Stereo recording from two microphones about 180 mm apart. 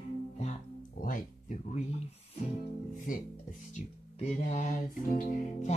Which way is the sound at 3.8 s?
35° left (ahead or behind).